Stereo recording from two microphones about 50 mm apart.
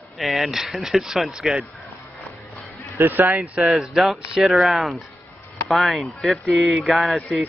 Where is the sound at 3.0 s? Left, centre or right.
Right.